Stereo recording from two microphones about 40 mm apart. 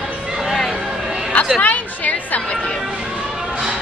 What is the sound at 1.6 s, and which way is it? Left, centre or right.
Chatter, left.